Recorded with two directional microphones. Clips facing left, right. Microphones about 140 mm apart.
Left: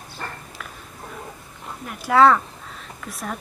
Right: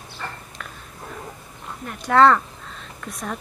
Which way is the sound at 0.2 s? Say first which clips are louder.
Even; 45° left (ahead or behind).